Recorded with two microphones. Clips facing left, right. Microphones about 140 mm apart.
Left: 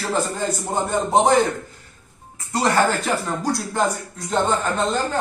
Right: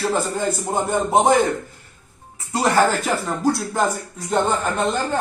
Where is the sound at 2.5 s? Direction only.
5° right (ahead or behind).